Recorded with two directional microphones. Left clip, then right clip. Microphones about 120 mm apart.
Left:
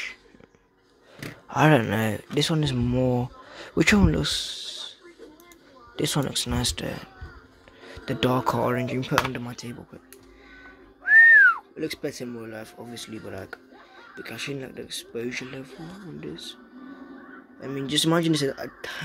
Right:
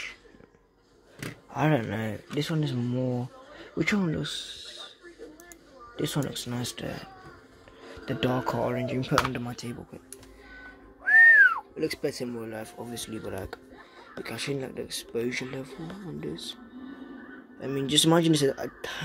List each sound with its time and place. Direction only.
1.5 s speech: 40° left (ahead or behind)
5.9 s speech: 35° left (ahead or behind)
9.3 s speech: 10° left (ahead or behind)
10.5 s whistling: centre (ahead or behind)
14.1 s speech: 5° right (ahead or behind)
17.6 s speech: 5° right (ahead or behind)